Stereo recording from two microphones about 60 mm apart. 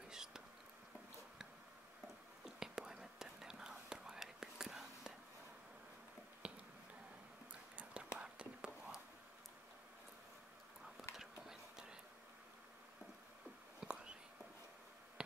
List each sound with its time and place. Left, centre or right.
0.1 s whispering: centre
2.4 s whispering: centre
6.4 s finger snapping: centre
7.7 s whispering: centre
11.1 s whispering: centre
13.7 s whispering: centre
15.2 s a sound: centre